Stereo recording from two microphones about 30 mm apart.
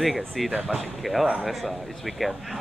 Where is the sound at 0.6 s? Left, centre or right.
Right.